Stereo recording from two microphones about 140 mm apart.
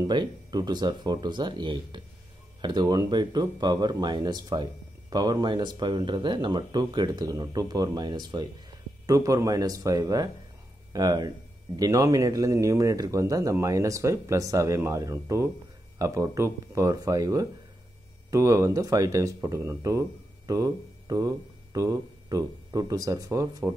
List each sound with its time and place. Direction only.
0.0 s speech: 30° right (ahead or behind)